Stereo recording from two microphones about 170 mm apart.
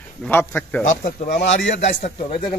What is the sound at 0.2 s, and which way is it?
Speech, 10° left (ahead or behind).